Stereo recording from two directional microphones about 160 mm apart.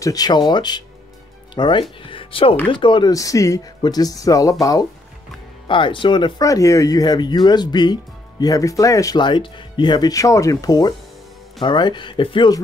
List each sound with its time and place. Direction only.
0.0 s speech: 25° left (ahead or behind)